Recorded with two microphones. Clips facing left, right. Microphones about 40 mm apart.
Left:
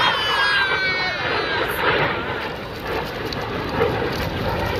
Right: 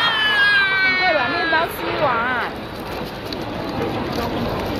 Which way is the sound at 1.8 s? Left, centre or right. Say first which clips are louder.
Left 2 dB; left.